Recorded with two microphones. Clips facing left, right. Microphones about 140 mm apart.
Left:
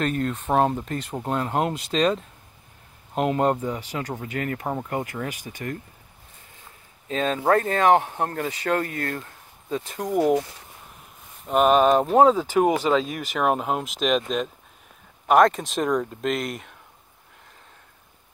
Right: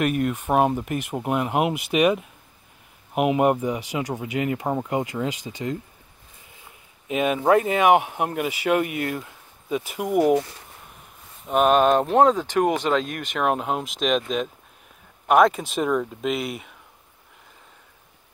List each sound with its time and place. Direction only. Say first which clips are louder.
0.0 s speech: right 2 dB; 15° right (ahead or behind)
7.1 s speech: right 2 dB; 15° right (ahead or behind)
11.4 s speech: even; centre (ahead or behind)